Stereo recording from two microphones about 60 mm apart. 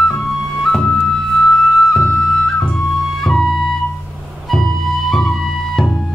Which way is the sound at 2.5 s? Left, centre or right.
Centre.